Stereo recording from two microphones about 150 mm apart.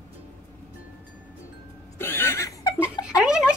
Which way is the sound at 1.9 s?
15° left (ahead or behind).